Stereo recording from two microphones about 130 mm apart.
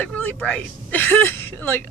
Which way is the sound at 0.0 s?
10° left (ahead or behind).